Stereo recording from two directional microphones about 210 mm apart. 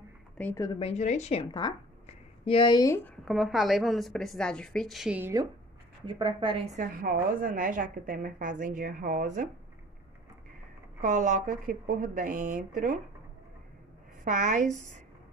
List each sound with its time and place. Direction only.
0.4 s speech: 10° left (ahead or behind)
3.3 s a woman's voice: centre (ahead or behind)
6.0 s a woman's voice: 20° right (ahead or behind); by 9.5 s 40° right (ahead or behind)
11.0 s a woman's voice: 35° right (ahead or behind)
14.2 s a woman's voice: 40° right (ahead or behind)